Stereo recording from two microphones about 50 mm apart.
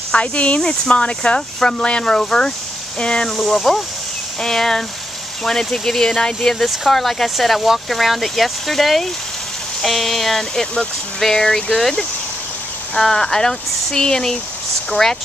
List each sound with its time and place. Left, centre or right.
0.1 s speech: left
0.6 s speech: centre
3.3 s speech: centre